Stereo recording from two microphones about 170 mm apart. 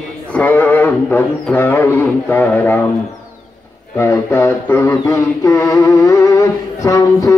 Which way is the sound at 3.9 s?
15° left (ahead or behind).